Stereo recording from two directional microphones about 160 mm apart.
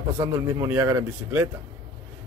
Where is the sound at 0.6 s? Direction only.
15° right (ahead or behind).